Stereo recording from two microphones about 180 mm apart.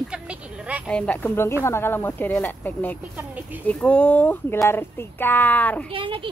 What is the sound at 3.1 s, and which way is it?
Speech, 10° right (ahead or behind).